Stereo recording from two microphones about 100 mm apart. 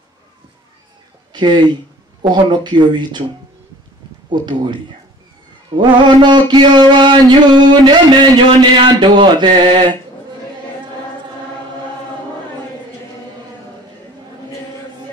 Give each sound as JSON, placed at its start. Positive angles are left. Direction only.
{"t": 1.3, "sound": "speech", "side_deg": -50}
{"t": 4.3, "sound": "speech", "side_deg": -50}